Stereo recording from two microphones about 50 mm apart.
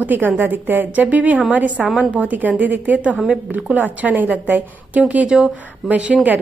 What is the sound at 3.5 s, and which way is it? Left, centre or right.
A woman's voice, right.